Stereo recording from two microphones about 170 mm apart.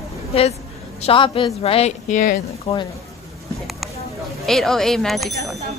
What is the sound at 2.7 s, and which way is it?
Speech, 35° left (ahead or behind).